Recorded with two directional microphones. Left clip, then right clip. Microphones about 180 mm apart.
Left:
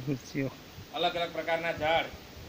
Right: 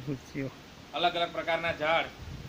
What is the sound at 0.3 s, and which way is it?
Speech, 25° left (ahead or behind).